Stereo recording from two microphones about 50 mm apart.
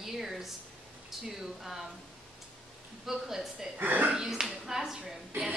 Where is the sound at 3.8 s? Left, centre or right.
Right.